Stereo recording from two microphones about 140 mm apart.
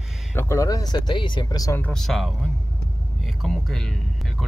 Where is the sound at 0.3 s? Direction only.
20° left (ahead or behind).